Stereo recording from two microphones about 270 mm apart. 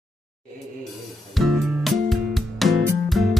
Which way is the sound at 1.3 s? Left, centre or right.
Centre.